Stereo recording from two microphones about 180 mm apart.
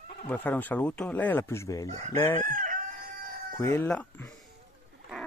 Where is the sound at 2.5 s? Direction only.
50° right (ahead or behind).